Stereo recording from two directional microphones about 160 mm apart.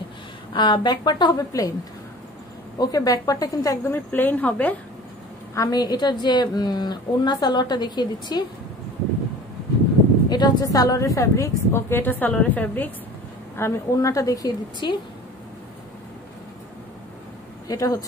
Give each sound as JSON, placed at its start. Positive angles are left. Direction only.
{"t": 0.5, "sound": "a woman's voice", "side_deg": 30}
{"t": 2.8, "sound": "a woman's voice", "side_deg": 20}
{"t": 5.5, "sound": "a woman's voice", "side_deg": 20}
{"t": 10.3, "sound": "a woman's voice", "side_deg": 25}
{"t": 17.6, "sound": "a woman's voice", "side_deg": 20}